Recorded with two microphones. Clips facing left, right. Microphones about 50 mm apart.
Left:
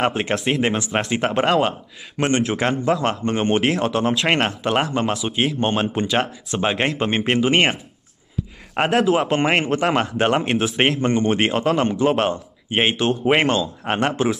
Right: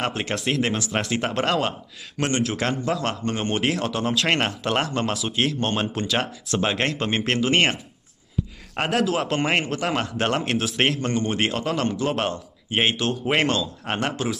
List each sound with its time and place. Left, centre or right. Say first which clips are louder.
0.0 s a man's voice: left 5 dB; centre
8.8 s speech: left 5 dB; centre
9.7 s a man's voice: left 6 dB; left
12.1 s speech: left 5 dB; centre